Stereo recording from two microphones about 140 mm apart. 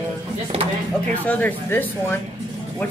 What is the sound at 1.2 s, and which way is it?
Speech, 10° left (ahead or behind).